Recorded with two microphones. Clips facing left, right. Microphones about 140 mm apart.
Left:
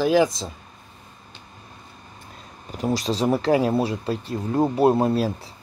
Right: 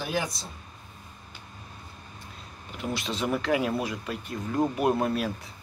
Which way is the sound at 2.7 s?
35° left (ahead or behind).